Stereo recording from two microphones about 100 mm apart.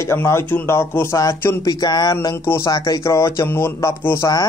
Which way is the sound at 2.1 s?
35° left (ahead or behind).